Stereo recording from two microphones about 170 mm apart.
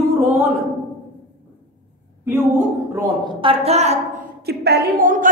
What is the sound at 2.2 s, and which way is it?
Speech, 15° right (ahead or behind).